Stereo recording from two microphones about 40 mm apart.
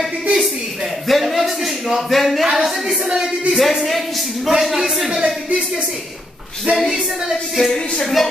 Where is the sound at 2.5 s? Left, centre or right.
Centre.